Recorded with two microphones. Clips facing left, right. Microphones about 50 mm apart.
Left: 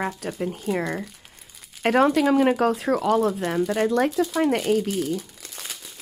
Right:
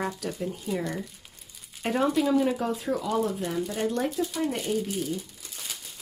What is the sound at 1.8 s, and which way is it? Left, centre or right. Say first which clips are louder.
Speech: left 6 dB; left.